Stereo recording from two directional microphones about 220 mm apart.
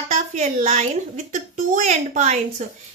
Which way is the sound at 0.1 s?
30° right (ahead or behind).